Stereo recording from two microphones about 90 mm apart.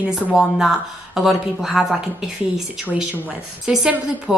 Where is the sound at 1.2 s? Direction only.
5° right (ahead or behind).